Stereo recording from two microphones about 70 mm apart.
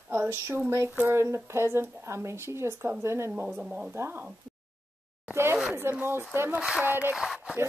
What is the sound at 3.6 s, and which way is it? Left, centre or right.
Speech, centre.